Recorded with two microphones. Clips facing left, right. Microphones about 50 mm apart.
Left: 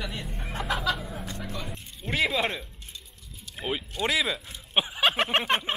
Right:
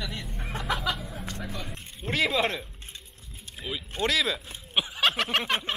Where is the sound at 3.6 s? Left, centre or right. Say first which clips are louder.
Left 4 dB; left.